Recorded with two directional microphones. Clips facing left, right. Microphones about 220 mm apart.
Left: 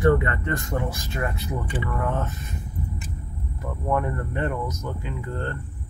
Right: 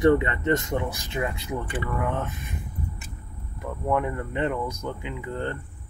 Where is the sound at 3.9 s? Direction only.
10° right (ahead or behind).